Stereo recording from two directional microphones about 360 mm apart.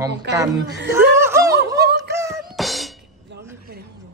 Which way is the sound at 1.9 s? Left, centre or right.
Centre.